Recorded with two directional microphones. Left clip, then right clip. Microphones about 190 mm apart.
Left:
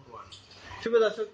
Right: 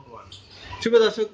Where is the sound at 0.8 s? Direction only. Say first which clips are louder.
Right 6 dB; 50° right (ahead or behind).